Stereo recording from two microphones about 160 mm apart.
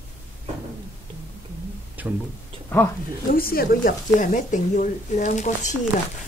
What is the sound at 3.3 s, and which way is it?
Speech, 65° left (ahead or behind).